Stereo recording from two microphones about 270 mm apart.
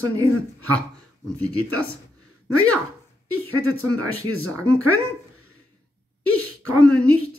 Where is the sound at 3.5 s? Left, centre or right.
Right.